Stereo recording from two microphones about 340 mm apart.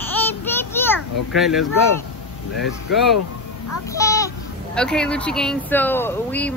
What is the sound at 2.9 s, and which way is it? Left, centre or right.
Speech, centre.